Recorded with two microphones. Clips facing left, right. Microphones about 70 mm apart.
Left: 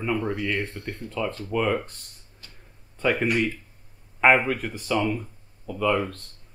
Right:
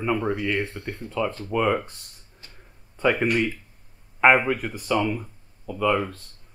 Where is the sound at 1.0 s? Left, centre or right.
Centre.